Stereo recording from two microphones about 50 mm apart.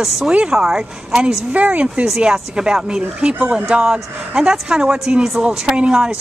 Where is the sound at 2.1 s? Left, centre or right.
Centre.